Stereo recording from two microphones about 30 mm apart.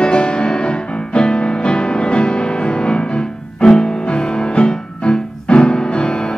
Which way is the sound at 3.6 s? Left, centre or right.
Left.